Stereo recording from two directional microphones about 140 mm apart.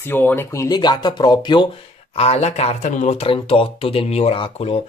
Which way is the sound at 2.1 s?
50° left (ahead or behind).